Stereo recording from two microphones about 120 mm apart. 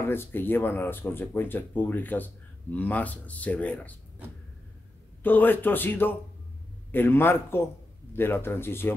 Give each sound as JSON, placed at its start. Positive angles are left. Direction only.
{"t": 0.0, "sound": "speech", "side_deg": 20}
{"t": 5.2, "sound": "speech", "side_deg": 15}